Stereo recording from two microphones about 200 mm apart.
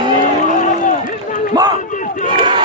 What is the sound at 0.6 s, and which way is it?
Run, 40° left (ahead or behind).